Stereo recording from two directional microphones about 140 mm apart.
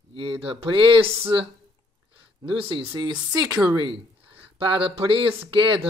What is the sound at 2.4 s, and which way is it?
Speech, 40° right (ahead or behind).